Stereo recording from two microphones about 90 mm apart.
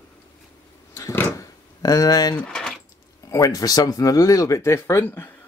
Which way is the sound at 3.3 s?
40° left (ahead or behind).